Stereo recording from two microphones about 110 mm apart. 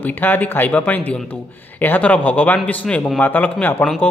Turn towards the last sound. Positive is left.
turn(degrees=15)  # may be behind; listen again after turning